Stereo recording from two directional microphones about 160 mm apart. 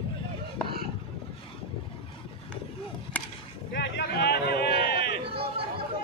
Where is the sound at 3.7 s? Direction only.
90° left.